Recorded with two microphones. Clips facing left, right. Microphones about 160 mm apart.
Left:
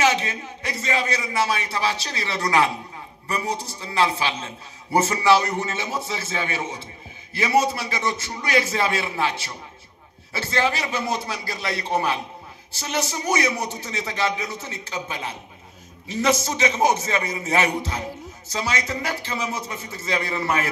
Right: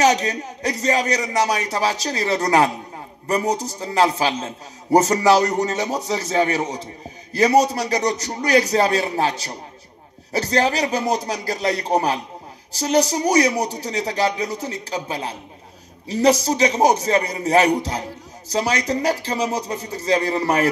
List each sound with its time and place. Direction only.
0.0 s a man's voice: 40° right (ahead or behind)